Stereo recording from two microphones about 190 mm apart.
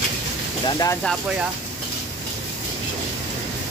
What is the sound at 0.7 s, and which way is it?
Speech, 20° left (ahead or behind).